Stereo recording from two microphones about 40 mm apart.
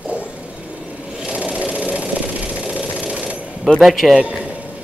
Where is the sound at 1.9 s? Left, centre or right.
Right.